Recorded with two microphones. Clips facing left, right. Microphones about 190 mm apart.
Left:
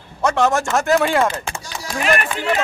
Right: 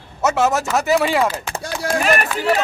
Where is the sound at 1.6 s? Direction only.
55° right (ahead or behind).